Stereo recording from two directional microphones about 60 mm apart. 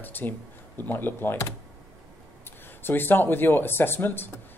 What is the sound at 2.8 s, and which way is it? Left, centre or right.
Speech, left.